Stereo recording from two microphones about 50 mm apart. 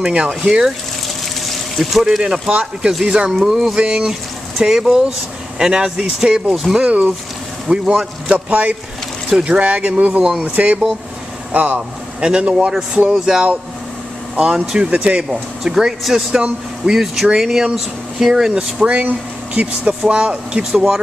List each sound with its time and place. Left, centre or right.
0.0 s speech: centre
1.0 s water: centre
2.0 s speech: centre
6.8 s speech: right
7.6 s speech: centre
8.3 s speech: right
10.2 s speech: centre
10.5 s speech: right
12.2 s speech: right
14.8 s speech: right
15.2 s speech: centre